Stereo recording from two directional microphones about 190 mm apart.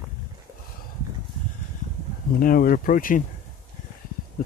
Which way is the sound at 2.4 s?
45° left (ahead or behind).